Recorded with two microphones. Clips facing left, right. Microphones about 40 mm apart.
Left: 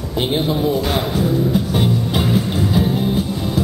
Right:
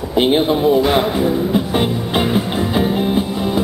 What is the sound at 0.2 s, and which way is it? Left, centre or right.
Music, right.